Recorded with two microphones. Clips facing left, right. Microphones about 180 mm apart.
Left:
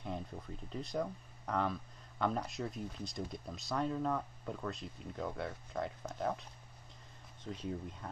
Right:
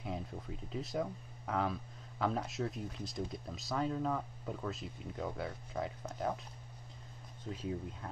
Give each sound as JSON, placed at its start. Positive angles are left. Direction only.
{"t": 0.0, "sound": "speech", "side_deg": -5}
{"t": 7.4, "sound": "speech", "side_deg": 0}